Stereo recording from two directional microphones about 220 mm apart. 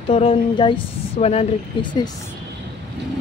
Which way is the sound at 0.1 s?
25° left (ahead or behind).